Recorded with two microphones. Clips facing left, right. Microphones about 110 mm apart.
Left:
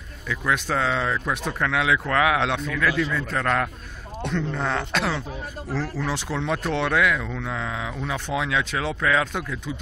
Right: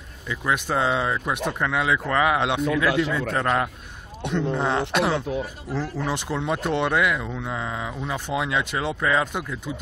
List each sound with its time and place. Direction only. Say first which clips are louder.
0.3 s speech: even; 10° right (ahead or behind)